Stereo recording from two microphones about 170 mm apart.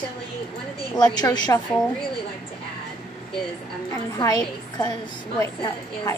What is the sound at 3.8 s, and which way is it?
A woman's voice, 20° left (ahead or behind).